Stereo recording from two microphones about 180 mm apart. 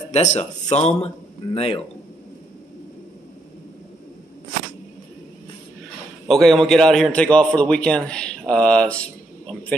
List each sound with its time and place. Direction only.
0.1 s speech: 40° left (ahead or behind)
6.2 s a man's voice: centre (ahead or behind)